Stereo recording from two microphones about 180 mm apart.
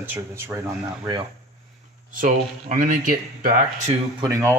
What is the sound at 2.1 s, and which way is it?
Speech, 50° right (ahead or behind).